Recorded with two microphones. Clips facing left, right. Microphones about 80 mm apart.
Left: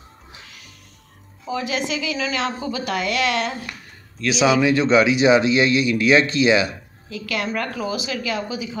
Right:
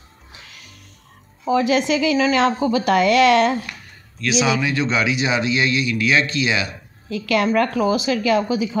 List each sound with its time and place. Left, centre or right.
1.5 s speech: right
4.3 s a man's voice: left
7.1 s speech: right